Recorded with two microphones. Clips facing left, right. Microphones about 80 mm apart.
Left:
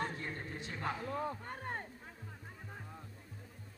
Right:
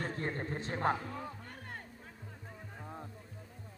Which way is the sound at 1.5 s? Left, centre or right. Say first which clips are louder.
Left 5 dB; left.